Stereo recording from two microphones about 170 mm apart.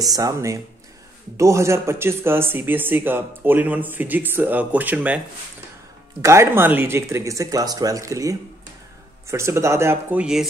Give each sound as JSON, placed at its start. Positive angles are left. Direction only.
{"t": 0.0, "sound": "speech", "side_deg": -20}
{"t": 6.2, "sound": "speech", "side_deg": -15}